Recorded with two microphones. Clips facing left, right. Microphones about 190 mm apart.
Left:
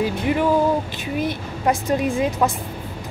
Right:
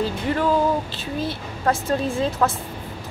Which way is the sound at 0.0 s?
15° left (ahead or behind).